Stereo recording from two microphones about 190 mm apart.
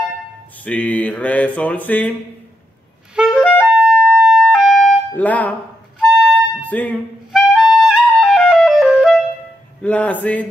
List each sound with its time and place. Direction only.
0.7 s mantra: 10° left (ahead or behind)
3.2 s clarinet: 5° right (ahead or behind)
3.8 s siren: 5° right (ahead or behind)
5.1 s mantra: 10° left (ahead or behind)
5.9 s music: 5° right (ahead or behind)
6.7 s speech: 10° left (ahead or behind)
7.3 s clarinet: 5° right (ahead or behind)
9.8 s mantra: 5° left (ahead or behind)